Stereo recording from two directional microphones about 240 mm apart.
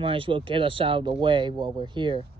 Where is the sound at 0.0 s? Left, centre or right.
Right.